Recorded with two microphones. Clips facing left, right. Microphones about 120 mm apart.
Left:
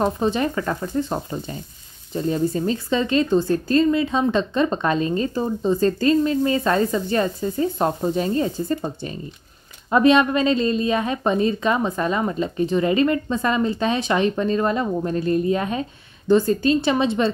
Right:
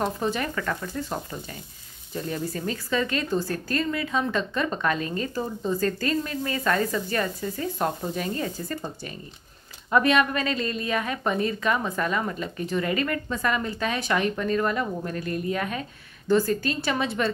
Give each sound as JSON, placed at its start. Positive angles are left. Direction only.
{"t": 0.0, "sound": "a woman's voice", "side_deg": 25}